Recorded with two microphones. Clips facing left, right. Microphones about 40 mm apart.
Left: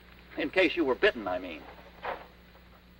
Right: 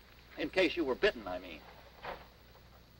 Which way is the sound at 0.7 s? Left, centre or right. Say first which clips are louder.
Left 6 dB; centre.